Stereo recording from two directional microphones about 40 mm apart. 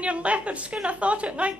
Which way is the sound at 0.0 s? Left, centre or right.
Right.